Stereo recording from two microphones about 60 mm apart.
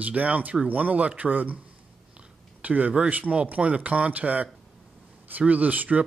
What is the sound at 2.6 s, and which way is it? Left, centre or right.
Speech, right.